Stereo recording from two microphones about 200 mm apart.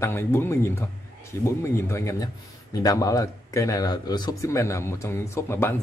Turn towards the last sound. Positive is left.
turn(degrees=10)  # may be behind; listen again after turning